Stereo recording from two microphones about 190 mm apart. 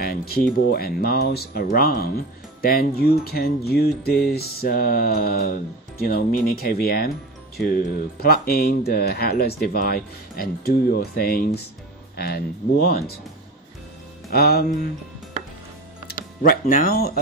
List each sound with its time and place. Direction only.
0.0 s a sound: 55° left (ahead or behind)
0.7 s speech: 55° left (ahead or behind)
8.2 s speech: 55° left (ahead or behind)
14.3 s speech: 55° left (ahead or behind)
16.1 s speech: 45° left (ahead or behind)